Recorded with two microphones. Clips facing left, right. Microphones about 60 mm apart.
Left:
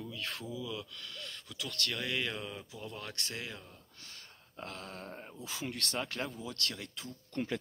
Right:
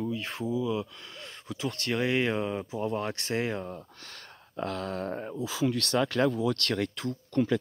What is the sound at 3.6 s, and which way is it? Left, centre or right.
Speech, right.